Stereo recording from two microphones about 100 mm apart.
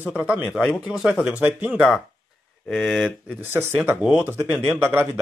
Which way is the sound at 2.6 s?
Centre (ahead or behind).